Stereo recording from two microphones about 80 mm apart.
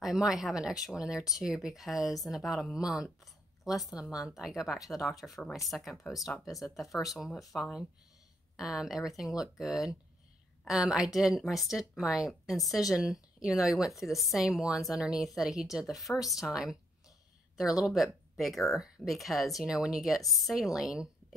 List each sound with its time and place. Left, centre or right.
0.0 s a woman's voice: centre
17.8 s speech: centre